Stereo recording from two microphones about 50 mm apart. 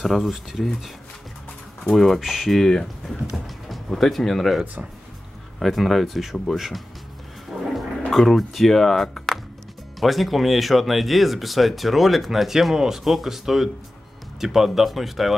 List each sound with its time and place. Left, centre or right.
0.0 s speech: centre
1.9 s speech: centre
7.5 s a sound: centre
8.1 s speech: centre